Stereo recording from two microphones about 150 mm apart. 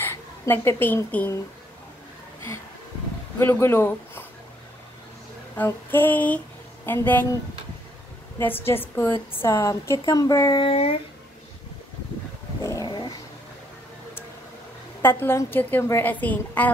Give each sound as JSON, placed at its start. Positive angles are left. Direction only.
{"t": 0.0, "sound": "a woman's voice", "side_deg": 15}
{"t": 3.3, "sound": "a woman's voice", "side_deg": 15}
{"t": 5.6, "sound": "a woman's voice", "side_deg": 15}
{"t": 8.4, "sound": "a woman's voice", "side_deg": 15}
{"t": 10.6, "sound": "a sound", "side_deg": 40}
{"t": 12.6, "sound": "cat", "side_deg": 25}
{"t": 15.0, "sound": "a woman's voice", "side_deg": 15}